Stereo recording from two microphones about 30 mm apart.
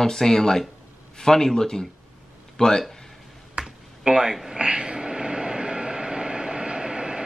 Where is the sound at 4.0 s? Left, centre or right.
Right.